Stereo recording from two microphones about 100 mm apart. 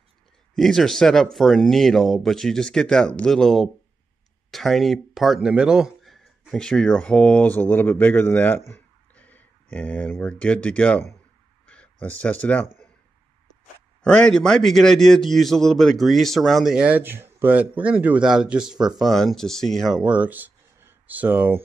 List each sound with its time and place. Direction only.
0.6 s a man's voice: 5° left (ahead or behind)
14.0 s a man's voice: 10° left (ahead or behind)
20.0 s speech: 15° right (ahead or behind)